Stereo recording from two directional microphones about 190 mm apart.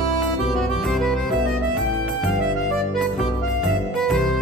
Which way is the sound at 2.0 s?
Centre (ahead or behind).